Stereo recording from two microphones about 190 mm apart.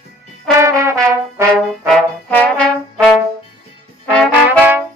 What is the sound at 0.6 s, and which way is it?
Brass instrument, 15° right (ahead or behind).